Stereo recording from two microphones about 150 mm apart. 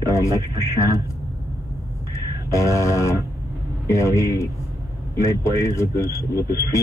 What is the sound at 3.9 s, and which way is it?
Speech, 20° left (ahead or behind).